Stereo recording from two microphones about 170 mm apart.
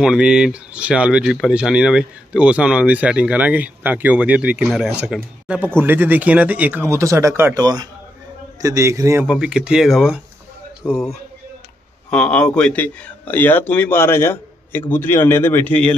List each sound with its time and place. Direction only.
0.0 s speech: 5° right (ahead or behind)
9.3 s speech: 5° right (ahead or behind)
12.1 s a man's voice: 5° left (ahead or behind)